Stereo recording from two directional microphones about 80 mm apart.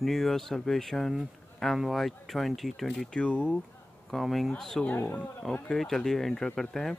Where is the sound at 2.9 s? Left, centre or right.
Centre.